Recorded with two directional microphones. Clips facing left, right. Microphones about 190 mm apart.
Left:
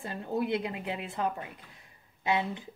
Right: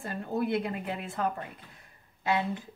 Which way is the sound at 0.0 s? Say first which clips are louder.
Right 1 dB; 15° left (ahead or behind).